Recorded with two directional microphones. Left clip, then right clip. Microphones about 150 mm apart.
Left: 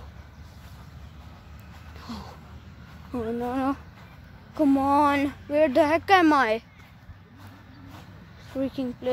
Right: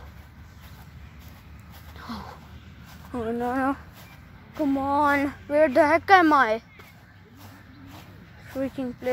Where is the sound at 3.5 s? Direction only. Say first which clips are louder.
Right 1 dB; 5° left (ahead or behind).